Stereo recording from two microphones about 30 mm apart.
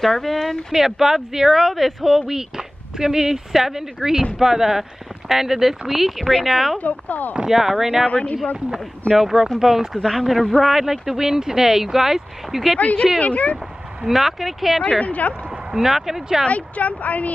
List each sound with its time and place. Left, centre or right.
0.0 s speech: centre
0.7 s speech: centre
6.8 s speech: left
7.4 s speech: centre
8.1 s speech: left
9.1 s speech: centre
10.0 s speech: centre
10.6 s speech: centre
12.7 s speech: left
14.0 s speech: centre
14.9 s speech: left
15.7 s speech: centre
16.4 s speech: left